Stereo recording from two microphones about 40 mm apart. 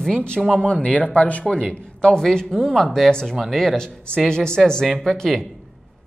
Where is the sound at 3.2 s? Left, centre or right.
Centre.